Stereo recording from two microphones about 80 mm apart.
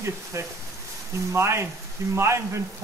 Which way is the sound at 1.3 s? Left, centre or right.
Right.